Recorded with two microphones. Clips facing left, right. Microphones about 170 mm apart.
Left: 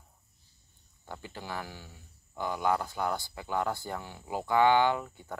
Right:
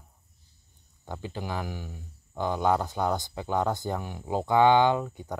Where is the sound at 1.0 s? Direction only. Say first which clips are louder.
Right 6 dB; 20° right (ahead or behind).